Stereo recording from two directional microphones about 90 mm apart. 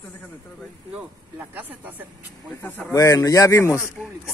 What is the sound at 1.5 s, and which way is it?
Speech, 20° right (ahead or behind).